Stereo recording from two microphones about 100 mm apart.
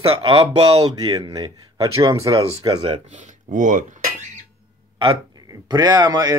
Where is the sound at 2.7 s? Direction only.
50° right (ahead or behind).